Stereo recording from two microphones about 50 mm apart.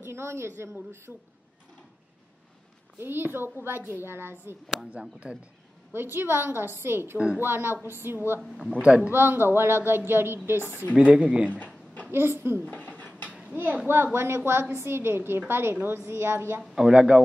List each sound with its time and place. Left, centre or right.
0.0 s a woman's voice: right
3.0 s a woman's voice: right
5.2 s speech: right
5.9 s a woman's voice: right
8.5 s speech: centre
8.8 s speech: right
9.1 s a woman's voice: right
11.0 s speech: right
11.6 s a sound: left
12.1 s a woman's voice: right
12.9 s a sound: left
13.8 s a woman's voice: right
16.7 s speech: centre